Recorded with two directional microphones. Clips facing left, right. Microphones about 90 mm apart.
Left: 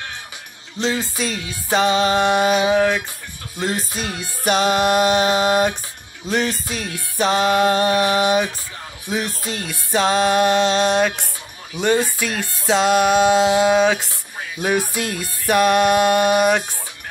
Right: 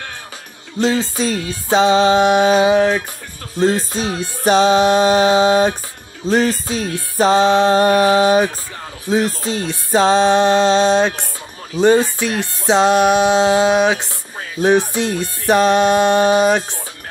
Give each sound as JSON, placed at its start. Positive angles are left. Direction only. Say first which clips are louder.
{"t": 0.7, "sound": "music", "louder": "right 5 dB", "side_deg": -35}